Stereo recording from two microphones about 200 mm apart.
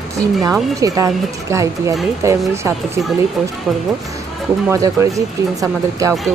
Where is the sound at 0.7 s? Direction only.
15° right (ahead or behind).